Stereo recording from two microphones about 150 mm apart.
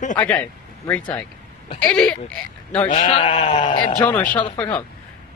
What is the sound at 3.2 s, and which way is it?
Speech, 30° left (ahead or behind).